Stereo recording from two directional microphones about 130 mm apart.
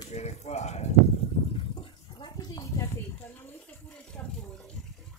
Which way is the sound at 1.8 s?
40° left (ahead or behind).